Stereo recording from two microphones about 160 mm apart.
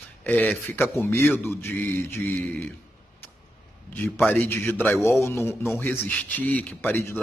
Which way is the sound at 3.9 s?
15° left (ahead or behind).